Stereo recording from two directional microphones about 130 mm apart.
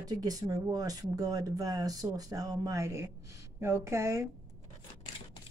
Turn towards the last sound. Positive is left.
turn(degrees=-20)  # may be behind; listen again after turning